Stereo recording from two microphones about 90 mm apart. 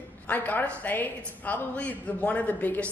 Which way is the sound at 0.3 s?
20° left (ahead or behind).